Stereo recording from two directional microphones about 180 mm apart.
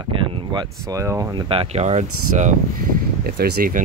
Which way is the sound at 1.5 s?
35° right (ahead or behind).